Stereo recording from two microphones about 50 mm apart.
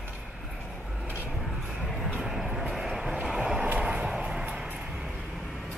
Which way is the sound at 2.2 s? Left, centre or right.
Centre.